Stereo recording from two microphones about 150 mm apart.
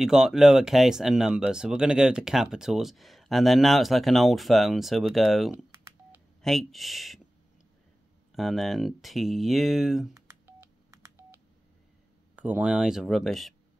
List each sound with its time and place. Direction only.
0.0 s speech: 5° right (ahead or behind)
8.3 s speech: centre (ahead or behind)
10.1 s telephone dialing: 15° right (ahead or behind)
12.4 s speech: 10° right (ahead or behind)